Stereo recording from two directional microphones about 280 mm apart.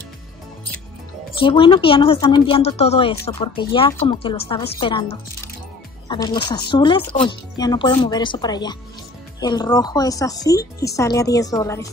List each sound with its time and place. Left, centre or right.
1.4 s a woman's voice: centre